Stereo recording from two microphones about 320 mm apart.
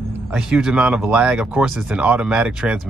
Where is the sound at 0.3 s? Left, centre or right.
Centre.